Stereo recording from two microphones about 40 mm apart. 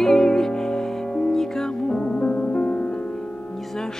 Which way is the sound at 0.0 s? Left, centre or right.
Centre.